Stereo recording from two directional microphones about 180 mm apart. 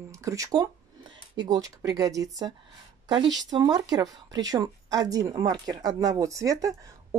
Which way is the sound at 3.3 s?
20° right (ahead or behind).